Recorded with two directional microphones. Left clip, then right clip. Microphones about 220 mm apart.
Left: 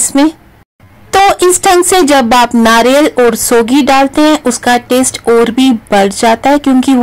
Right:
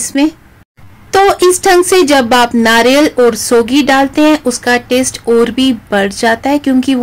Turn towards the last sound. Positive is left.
turn(degrees=20)  # may be behind; listen again after turning